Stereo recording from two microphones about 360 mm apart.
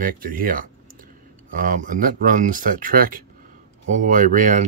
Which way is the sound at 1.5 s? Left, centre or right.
Right.